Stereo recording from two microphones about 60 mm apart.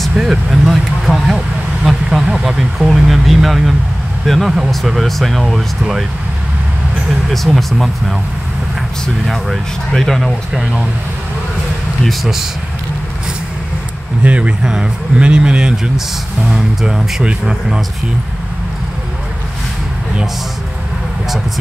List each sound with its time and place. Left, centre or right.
0.1 s speech: centre
7.2 s speech: centre
9.5 s speech: centre
10.5 s speech: centre
12.0 s speech: centre
14.2 s speech: right
14.6 s speech: centre
16.8 s speech: centre